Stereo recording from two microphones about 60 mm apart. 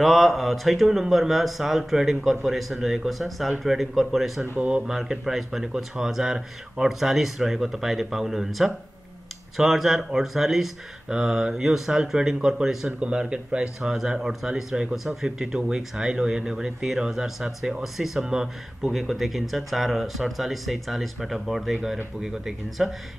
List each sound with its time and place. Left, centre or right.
0.0 s speech: centre
4.6 s speech: right
4.8 s speech: centre